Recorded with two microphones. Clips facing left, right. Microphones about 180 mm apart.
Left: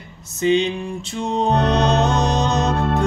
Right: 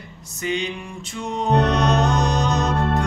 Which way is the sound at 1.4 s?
30° left (ahead or behind).